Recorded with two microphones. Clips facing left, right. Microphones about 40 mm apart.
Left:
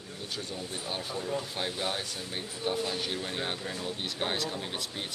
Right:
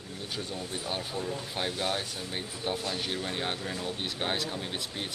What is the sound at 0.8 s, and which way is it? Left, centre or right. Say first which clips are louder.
Speech: even; centre.